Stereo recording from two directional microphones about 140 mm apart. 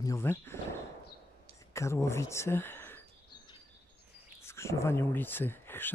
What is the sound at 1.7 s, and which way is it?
Speech, 20° left (ahead or behind).